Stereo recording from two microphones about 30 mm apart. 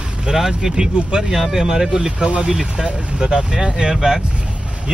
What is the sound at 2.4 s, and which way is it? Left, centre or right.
Speech, right.